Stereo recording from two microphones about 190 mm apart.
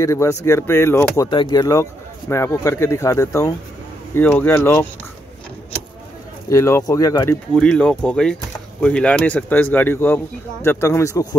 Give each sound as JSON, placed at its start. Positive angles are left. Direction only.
{"t": 0.0, "sound": "speech", "side_deg": 15}
{"t": 6.5, "sound": "speech", "side_deg": 15}
{"t": 7.5, "sound": "speech", "side_deg": 5}